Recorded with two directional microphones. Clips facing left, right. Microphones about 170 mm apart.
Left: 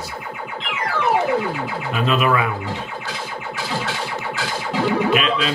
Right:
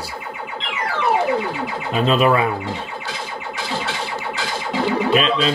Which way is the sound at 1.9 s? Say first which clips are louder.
Right 3 dB; 30° right (ahead or behind).